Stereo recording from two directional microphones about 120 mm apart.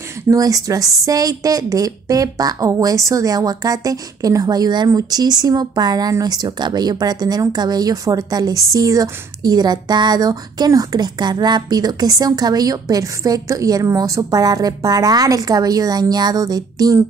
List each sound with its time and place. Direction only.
0.3 s a woman's voice: 30° right (ahead or behind)